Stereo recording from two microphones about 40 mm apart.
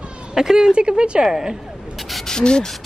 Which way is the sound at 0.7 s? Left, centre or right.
Right.